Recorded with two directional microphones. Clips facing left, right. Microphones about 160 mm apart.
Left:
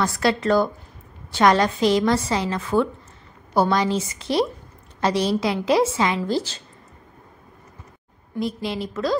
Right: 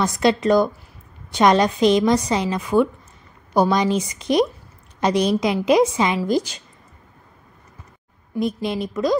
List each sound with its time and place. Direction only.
0.0 s a woman's voice: 20° right (ahead or behind)
8.4 s a woman's voice: 20° right (ahead or behind)